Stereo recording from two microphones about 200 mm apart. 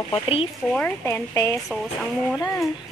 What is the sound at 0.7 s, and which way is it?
Speech, 5° left (ahead or behind).